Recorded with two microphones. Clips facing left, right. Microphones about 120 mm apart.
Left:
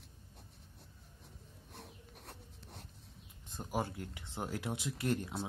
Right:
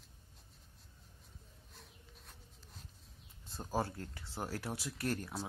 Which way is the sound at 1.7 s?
70° left (ahead or behind).